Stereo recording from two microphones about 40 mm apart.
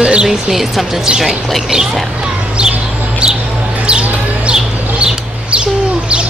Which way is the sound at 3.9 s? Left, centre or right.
Right.